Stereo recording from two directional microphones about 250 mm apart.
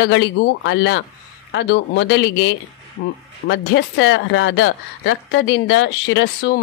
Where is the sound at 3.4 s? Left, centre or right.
Left.